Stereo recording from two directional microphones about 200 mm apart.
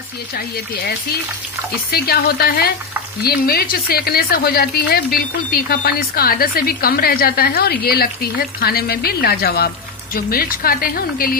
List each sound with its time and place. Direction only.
1.9 s speech: 50° left (ahead or behind)